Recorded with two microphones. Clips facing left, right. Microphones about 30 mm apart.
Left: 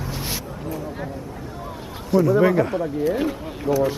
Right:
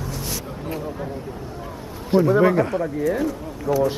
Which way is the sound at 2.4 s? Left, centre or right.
Centre.